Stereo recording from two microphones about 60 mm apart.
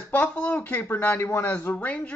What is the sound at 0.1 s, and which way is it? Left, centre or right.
A man's voice, left.